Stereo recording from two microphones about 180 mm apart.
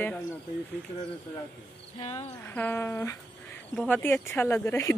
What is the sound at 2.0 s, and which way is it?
Speech, 35° left (ahead or behind).